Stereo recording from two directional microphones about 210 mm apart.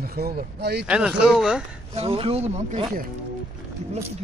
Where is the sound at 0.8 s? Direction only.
5° right (ahead or behind).